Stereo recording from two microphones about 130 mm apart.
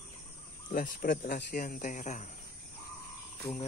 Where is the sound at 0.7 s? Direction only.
90° left; by 2.3 s 70° left (ahead or behind).